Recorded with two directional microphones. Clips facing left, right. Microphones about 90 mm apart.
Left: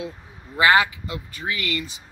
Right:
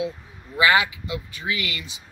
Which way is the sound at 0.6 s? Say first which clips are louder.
Left 2 dB; 40° left (ahead or behind).